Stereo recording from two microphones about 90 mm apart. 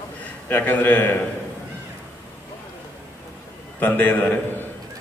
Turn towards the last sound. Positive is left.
turn(degrees=20)  # may be behind; listen again after turning